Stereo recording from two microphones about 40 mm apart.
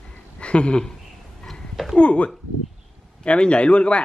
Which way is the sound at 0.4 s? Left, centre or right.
Left.